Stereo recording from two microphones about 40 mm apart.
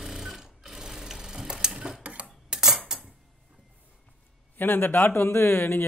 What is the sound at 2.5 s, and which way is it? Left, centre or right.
Cutlery, centre.